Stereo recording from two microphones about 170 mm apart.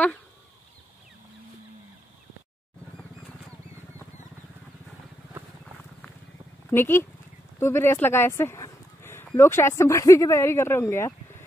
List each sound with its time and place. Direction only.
6.7 s speech: 15° left (ahead or behind)
7.5 s a sound: 15° left (ahead or behind)
9.4 s speech: 15° left (ahead or behind)